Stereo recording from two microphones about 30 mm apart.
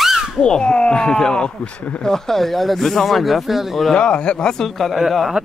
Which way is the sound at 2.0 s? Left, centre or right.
Centre.